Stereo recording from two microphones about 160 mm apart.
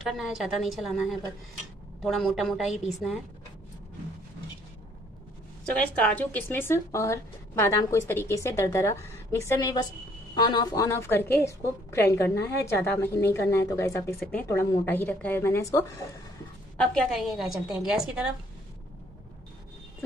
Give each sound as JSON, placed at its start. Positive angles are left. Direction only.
{"t": 0.0, "sound": "a woman's voice", "side_deg": 0}
{"t": 5.8, "sound": "speech", "side_deg": 10}
{"t": 16.7, "sound": "a woman's voice", "side_deg": 5}